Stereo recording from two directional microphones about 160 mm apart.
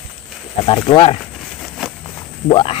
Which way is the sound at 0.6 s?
35° left (ahead or behind).